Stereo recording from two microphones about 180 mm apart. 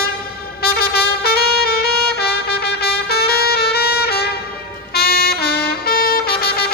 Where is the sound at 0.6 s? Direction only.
60° left (ahead or behind).